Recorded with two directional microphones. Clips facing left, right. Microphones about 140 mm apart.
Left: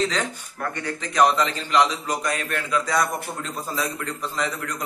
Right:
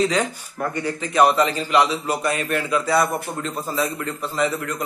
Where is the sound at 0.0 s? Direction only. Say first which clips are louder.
Right 4 dB; 10° right (ahead or behind).